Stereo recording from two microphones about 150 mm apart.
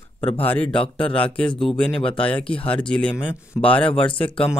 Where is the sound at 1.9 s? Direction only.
35° left (ahead or behind).